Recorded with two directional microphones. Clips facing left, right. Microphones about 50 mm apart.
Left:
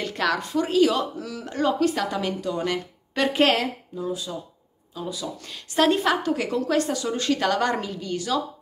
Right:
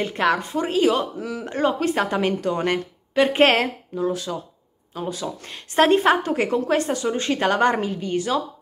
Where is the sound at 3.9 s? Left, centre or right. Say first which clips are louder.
Right 5 dB; right.